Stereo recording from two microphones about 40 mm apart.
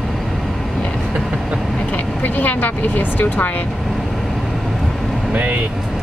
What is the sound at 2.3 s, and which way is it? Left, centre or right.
Speech, left.